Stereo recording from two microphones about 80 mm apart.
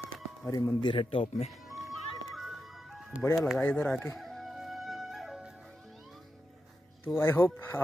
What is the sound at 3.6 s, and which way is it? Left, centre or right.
Speech, centre.